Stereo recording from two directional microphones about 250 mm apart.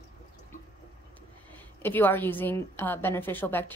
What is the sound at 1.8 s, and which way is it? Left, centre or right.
A woman's voice, centre.